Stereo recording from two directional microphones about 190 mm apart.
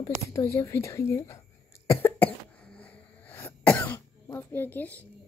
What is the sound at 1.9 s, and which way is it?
Cough, 10° left (ahead or behind).